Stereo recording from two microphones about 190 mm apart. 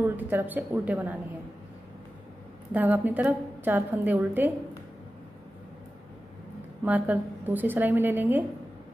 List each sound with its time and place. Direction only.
0.0 s a woman's voice: 10° right (ahead or behind)
2.7 s a woman's voice: 10° right (ahead or behind)
6.8 s a woman's voice: 10° right (ahead or behind)